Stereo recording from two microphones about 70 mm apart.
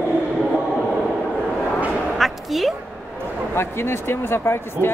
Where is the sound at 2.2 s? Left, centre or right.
Centre.